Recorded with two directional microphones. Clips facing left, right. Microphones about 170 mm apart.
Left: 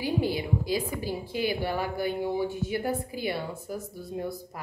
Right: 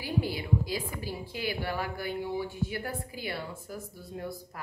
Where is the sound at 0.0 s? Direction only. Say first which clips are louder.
Left 4 dB; 20° left (ahead or behind).